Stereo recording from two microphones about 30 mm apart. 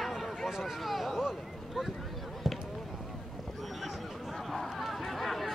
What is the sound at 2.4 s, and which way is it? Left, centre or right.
Basketball bounce, centre.